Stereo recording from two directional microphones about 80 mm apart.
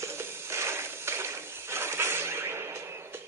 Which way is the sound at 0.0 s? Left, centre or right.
Right.